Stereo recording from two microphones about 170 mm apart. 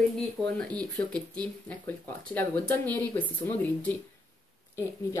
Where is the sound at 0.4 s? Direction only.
5° left (ahead or behind).